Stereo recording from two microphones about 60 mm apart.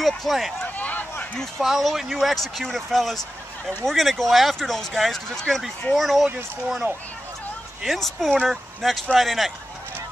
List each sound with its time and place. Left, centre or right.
0.0 s speech: centre
0.7 s speech: left
1.6 s speech: centre
7.8 s speech: centre